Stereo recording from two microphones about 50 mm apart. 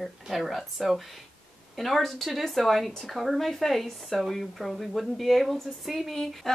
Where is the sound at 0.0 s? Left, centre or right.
Centre.